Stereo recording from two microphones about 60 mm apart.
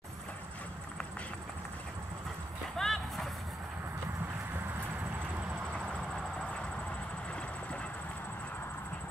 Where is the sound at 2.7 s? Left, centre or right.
Centre.